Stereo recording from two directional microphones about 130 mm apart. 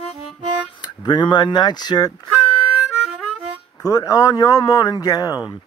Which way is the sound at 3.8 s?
25° left (ahead or behind).